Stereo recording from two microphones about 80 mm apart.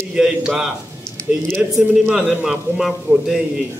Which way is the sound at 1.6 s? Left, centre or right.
Right.